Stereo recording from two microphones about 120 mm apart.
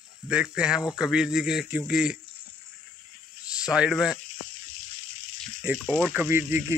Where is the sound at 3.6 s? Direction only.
5° right (ahead or behind).